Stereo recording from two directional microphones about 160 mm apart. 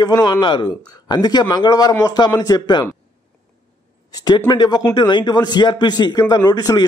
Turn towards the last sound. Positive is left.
turn(degrees=25)  # may be behind; listen again after turning